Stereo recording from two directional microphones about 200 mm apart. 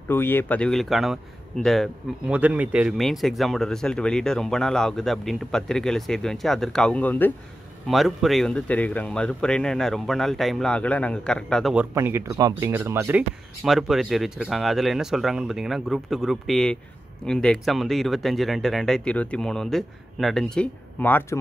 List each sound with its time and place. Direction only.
0.1 s speech: 10° left (ahead or behind)